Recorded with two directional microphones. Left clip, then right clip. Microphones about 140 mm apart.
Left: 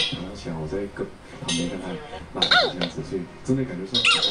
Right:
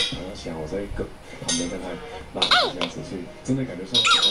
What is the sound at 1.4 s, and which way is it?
Speech, centre (ahead or behind).